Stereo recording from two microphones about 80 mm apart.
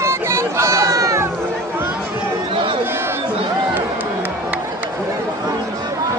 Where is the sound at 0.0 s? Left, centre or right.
Right.